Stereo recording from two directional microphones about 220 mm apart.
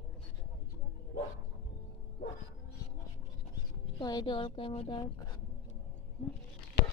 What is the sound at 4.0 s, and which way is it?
Speech, 20° left (ahead or behind).